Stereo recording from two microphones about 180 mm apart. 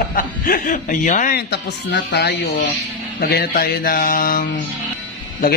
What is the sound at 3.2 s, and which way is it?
Speech, 60° left (ahead or behind).